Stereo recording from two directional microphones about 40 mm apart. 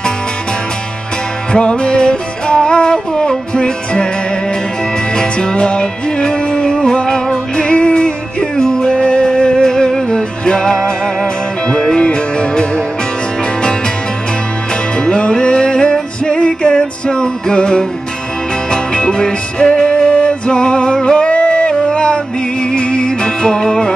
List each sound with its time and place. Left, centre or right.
1.5 s music: left
5.1 s music: left
15.0 s music: left